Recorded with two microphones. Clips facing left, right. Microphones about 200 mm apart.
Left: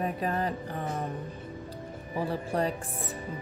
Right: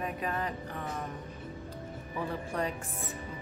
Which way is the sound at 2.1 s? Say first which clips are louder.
Left 5 dB; 35° left (ahead or behind).